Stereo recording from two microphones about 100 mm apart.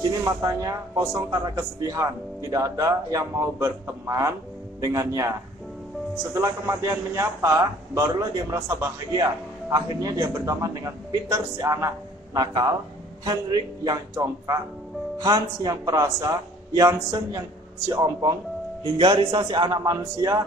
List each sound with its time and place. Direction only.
0.2 s speech: 35° right (ahead or behind)
6.3 s speech: 30° right (ahead or behind)
12.4 s speech: 40° right (ahead or behind)
14.1 s speech: 30° right (ahead or behind)
18.9 s a man's voice: 50° right (ahead or behind); by 20.4 s 35° right (ahead or behind)